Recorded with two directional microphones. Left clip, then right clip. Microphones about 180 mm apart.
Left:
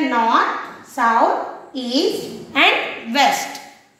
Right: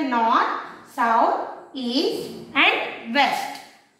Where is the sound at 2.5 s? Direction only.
35° left (ahead or behind).